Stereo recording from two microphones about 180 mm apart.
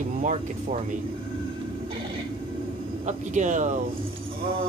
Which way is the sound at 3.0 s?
40° right (ahead or behind).